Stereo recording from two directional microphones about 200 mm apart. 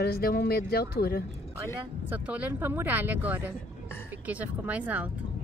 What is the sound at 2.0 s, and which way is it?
Speech, 10° right (ahead or behind).